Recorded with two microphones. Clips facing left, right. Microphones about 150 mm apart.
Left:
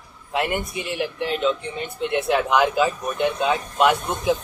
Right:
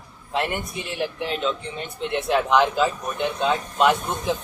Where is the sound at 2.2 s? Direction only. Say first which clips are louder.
Right 1 dB; 5° left (ahead or behind).